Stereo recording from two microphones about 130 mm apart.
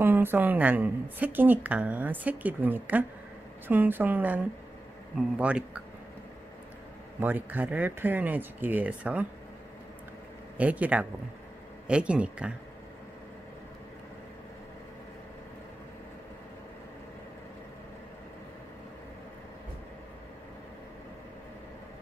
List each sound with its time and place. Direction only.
0.0 s a woman's voice: 15° right (ahead or behind)
7.2 s a woman's voice: 15° right (ahead or behind)
10.6 s a woman's voice: 10° right (ahead or behind)